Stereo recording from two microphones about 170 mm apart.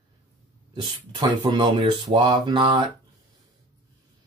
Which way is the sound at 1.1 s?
25° right (ahead or behind).